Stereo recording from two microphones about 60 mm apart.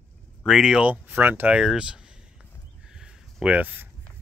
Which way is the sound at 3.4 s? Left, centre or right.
Right.